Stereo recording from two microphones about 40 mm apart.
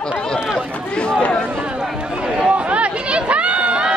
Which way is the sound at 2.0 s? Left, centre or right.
Right.